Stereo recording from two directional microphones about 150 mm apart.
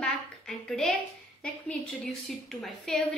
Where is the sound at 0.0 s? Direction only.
5° left (ahead or behind).